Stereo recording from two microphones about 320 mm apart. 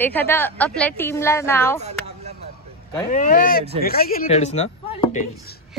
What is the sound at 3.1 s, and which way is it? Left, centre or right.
Speech, left.